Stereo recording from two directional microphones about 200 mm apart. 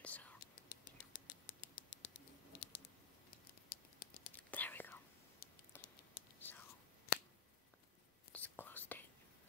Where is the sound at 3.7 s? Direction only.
50° left (ahead or behind).